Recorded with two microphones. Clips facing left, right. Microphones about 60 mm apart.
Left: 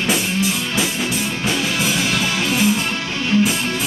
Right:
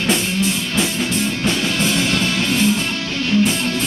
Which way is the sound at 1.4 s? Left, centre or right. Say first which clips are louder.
Left 1 dB; centre.